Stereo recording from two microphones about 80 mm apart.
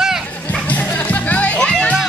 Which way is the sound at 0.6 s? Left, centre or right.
Centre.